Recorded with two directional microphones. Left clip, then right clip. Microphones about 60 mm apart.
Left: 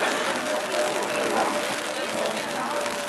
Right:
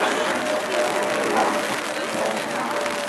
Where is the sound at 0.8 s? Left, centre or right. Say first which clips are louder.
Right 3 dB; centre.